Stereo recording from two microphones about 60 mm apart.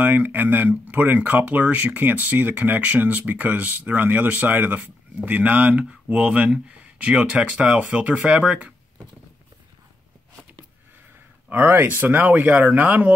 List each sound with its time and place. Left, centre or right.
0.0 s speech: right
11.5 s speech: right